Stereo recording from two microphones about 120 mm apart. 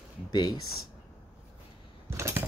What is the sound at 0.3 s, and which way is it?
Speech, 35° left (ahead or behind).